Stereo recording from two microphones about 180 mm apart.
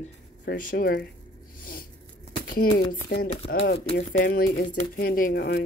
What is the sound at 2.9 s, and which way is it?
Speech, 55° left (ahead or behind).